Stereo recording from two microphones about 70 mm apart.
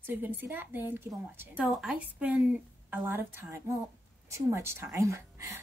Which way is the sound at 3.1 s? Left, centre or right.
Right.